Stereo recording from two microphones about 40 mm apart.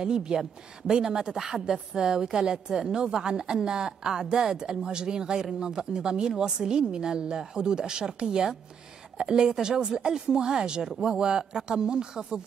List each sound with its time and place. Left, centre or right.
0.0 s a woman's voice: centre